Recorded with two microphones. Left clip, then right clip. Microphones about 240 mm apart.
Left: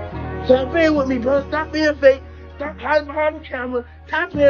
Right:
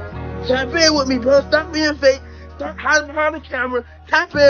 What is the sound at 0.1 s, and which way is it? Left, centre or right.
Speech, centre.